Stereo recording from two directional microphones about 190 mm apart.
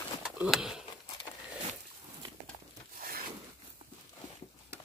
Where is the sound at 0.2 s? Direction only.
5° right (ahead or behind).